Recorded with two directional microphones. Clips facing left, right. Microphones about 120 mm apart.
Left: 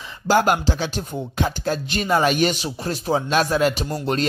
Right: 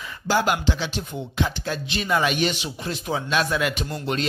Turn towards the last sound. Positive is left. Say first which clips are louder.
# left 5 dB
turn(degrees=35)  # may be behind; listen again after turning